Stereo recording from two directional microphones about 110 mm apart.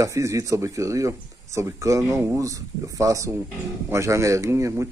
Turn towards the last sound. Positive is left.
turn(degrees=-25)  # may be behind; listen again after turning